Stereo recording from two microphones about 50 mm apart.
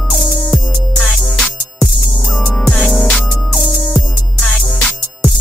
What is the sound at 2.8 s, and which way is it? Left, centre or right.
Music, centre.